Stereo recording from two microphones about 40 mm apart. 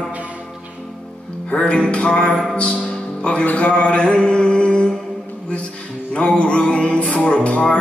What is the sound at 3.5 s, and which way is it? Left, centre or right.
Music, left.